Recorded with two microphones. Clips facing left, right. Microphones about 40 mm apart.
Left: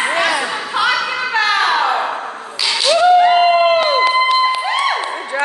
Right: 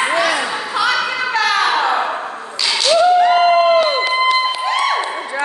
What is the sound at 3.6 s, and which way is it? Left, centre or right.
Crowd, left.